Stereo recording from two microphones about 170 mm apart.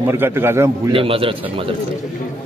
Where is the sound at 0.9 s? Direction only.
30° right (ahead or behind).